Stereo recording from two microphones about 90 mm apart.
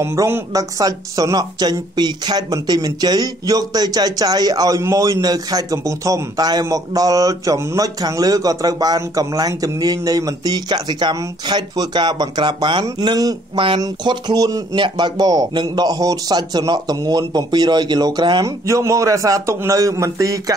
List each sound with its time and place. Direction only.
0.0 s a man's voice: 35° right (ahead or behind); by 12.8 s 60° right (ahead or behind)
13.0 s a man's voice: 50° right (ahead or behind)
14.8 s a man's voice: 55° right (ahead or behind)
18.4 s a man's voice: 35° right (ahead or behind)